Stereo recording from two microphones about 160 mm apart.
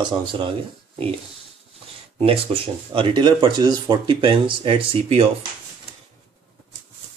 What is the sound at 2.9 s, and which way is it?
Speech, 30° right (ahead or behind).